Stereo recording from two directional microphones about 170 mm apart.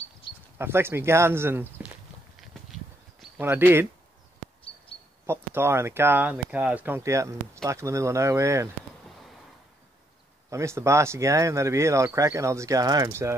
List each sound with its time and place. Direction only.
0.6 s speech: 15° right (ahead or behind)
3.3 s speech: 10° right (ahead or behind)
5.2 s speech: 15° right (ahead or behind)
10.5 s speech: 15° right (ahead or behind)